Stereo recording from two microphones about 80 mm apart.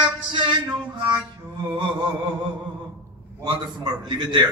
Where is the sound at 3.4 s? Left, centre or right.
Right.